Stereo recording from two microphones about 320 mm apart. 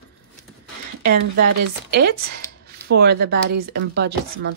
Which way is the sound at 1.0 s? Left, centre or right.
Right.